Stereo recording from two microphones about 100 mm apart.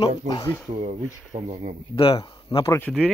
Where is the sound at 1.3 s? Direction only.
90° right.